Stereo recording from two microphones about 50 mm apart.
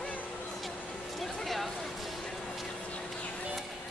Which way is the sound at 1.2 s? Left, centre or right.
Centre.